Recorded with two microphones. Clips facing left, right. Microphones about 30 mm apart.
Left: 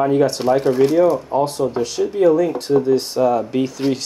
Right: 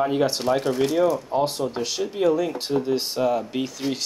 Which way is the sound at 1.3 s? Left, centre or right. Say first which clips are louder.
Left 5 dB; centre.